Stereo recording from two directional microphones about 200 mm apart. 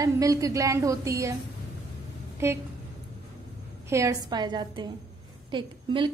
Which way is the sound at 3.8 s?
15° right (ahead or behind).